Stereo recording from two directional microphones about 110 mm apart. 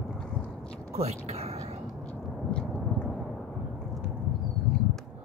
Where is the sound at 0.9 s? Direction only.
75° right (ahead or behind).